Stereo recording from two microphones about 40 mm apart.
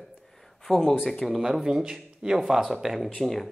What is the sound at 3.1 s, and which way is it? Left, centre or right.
Speech, centre.